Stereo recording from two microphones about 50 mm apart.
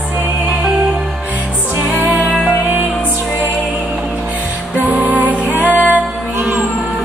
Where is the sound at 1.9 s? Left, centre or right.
Right.